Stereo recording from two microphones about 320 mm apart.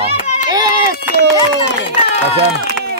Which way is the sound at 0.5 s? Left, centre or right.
Centre.